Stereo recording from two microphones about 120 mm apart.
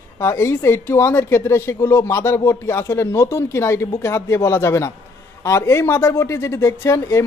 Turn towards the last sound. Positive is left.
turn(degrees=25)  # may be behind; listen again after turning